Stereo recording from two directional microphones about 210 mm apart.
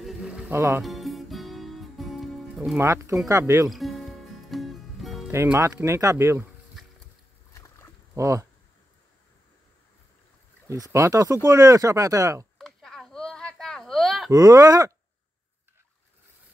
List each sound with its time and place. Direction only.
0.0 s music: centre (ahead or behind)
0.5 s speech: 10° right (ahead or behind)
0.8 s music: centre (ahead or behind)
2.8 s speech: 15° right (ahead or behind)
3.7 s music: centre (ahead or behind)
5.3 s speech: 15° right (ahead or behind)
7.5 s a sound: 15° left (ahead or behind)
8.1 s speech: 15° right (ahead or behind)
10.9 s speech: 15° right (ahead or behind)
12.5 s a sound: centre (ahead or behind)
14.3 s speech: 15° right (ahead or behind)